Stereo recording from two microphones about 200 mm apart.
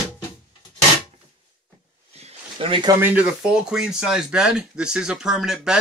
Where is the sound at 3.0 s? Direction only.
5° right (ahead or behind).